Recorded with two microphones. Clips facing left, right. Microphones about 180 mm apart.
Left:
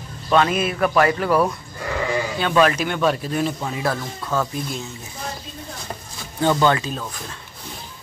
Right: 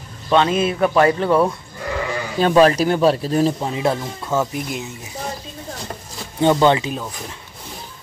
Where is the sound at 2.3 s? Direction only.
35° right (ahead or behind); by 4.9 s 15° right (ahead or behind).